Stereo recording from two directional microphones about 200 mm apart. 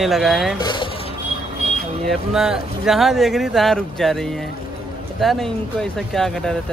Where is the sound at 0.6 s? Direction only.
20° left (ahead or behind).